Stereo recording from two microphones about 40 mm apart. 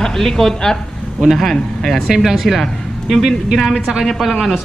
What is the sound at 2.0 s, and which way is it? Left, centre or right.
Speech, centre.